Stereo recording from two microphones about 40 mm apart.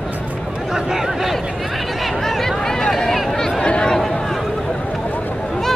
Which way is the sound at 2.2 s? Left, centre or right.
Centre.